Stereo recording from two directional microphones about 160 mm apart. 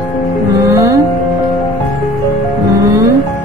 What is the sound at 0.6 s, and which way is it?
Music, 20° right (ahead or behind).